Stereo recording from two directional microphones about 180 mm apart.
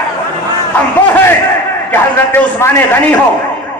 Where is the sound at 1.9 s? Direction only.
10° left (ahead or behind).